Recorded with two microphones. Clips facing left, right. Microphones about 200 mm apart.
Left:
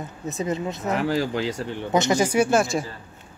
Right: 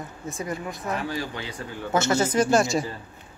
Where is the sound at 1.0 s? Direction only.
90° left.